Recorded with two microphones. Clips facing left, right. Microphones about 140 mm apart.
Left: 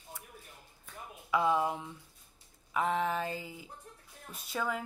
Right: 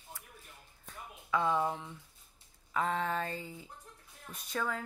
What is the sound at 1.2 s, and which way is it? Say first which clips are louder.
A woman's voice: left 2 dB; 10° left (ahead or behind).